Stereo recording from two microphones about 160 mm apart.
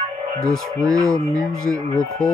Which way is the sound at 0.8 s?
20° right (ahead or behind).